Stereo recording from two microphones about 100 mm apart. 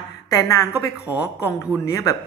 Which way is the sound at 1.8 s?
30° left (ahead or behind).